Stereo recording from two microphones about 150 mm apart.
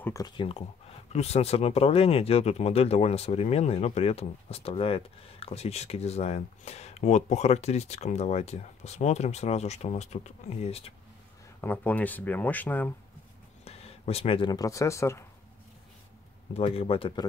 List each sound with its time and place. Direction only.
0.0 s speech: 20° left (ahead or behind)
0.4 s speech: 40° left (ahead or behind)
11.6 s speech: 15° left (ahead or behind)
13.7 s speech: 45° left (ahead or behind); by 15.2 s 20° left (ahead or behind)
16.5 s speech: 40° left (ahead or behind)